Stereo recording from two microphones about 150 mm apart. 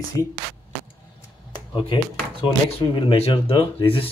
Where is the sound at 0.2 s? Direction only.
25° left (ahead or behind).